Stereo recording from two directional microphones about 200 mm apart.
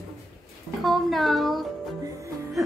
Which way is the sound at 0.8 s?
Centre (ahead or behind).